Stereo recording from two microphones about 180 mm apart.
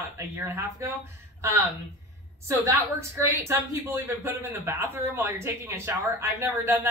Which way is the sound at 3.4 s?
15° right (ahead or behind).